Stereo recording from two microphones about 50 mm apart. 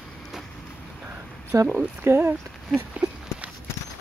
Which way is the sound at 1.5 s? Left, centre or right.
Right.